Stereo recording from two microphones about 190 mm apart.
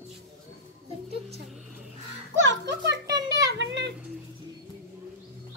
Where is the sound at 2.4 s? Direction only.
65° right (ahead or behind).